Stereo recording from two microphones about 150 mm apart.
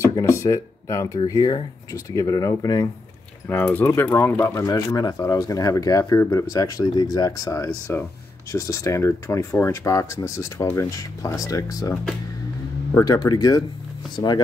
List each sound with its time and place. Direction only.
0.0 s speech: 20° left (ahead or behind)
3.4 s speech: 10° left (ahead or behind); by 14.4 s 30° left (ahead or behind)